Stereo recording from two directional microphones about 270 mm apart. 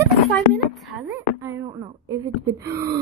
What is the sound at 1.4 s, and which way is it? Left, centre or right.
A woman's voice, centre.